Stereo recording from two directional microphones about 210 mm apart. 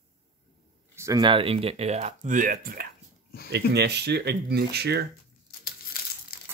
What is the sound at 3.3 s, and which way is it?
Speech, 45° left (ahead or behind).